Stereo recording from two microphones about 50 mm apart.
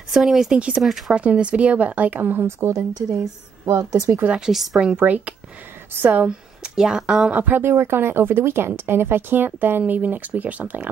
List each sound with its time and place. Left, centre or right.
0.1 s a woman's voice: centre
0.5 s a woman's voice: centre
0.8 s a woman's voice: centre
1.1 s a woman's voice: right
2.4 s a woman's voice: right
4.5 s a woman's voice: centre
4.9 s speech: right
6.2 s speech: centre
7.2 s speech: right
7.7 s speech: right